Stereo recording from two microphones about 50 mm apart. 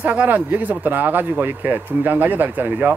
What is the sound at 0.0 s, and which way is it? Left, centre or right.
Speech, right.